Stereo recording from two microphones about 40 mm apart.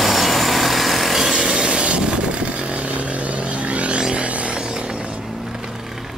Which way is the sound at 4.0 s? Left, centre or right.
Centre.